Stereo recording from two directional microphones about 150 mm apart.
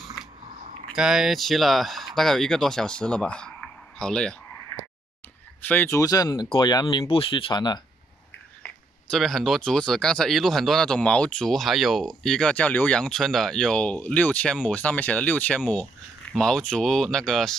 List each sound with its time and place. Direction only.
0.9 s speech: 5° right (ahead or behind)
5.6 s speech: 10° left (ahead or behind); by 7.8 s 30° left (ahead or behind)
8.6 s speech: centre (ahead or behind)